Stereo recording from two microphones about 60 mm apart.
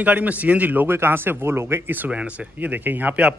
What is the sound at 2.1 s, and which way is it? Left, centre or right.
A man's voice, right.